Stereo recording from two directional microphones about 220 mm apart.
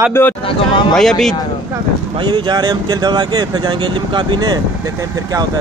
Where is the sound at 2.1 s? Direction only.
20° right (ahead or behind).